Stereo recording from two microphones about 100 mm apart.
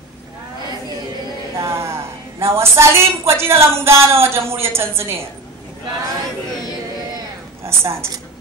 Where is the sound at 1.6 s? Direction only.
25° right (ahead or behind).